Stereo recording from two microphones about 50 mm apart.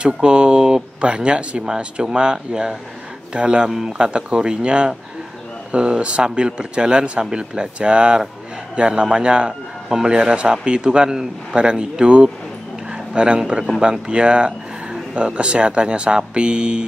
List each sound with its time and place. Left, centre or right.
0.0 s a man's voice: centre